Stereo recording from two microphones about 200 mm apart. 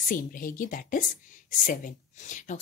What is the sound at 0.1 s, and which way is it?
A woman's voice, 45° left (ahead or behind).